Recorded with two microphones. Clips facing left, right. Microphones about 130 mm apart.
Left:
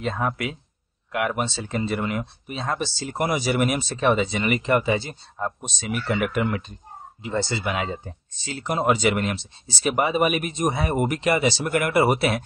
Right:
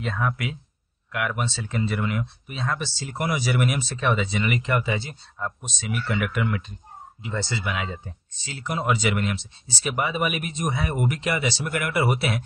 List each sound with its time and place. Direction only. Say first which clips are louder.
0.0 s speech: left 2 dB; 30° left (ahead or behind)